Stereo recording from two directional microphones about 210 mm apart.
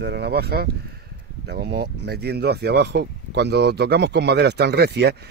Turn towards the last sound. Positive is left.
turn(degrees=-50)  # may be behind; listen again after turning